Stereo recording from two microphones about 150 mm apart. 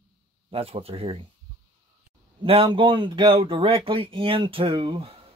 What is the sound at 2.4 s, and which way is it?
Speech, 35° right (ahead or behind).